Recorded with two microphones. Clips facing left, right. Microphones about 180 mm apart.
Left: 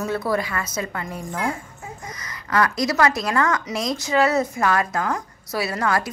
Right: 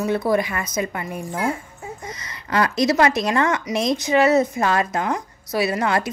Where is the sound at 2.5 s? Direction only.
25° right (ahead or behind).